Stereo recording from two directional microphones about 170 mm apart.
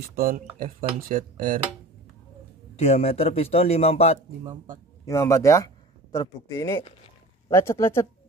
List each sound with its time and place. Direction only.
0.1 s speech: 55° right (ahead or behind)
2.7 s a man's voice: 35° left (ahead or behind)
5.0 s speech: 15° left (ahead or behind)